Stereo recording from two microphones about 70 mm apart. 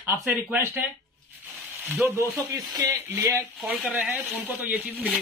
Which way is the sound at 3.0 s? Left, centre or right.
Right.